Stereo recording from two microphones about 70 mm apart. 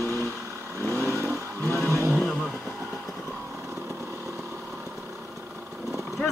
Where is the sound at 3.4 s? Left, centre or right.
Right.